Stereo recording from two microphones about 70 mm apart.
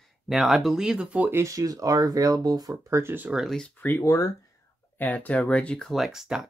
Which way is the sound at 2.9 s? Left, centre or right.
Right.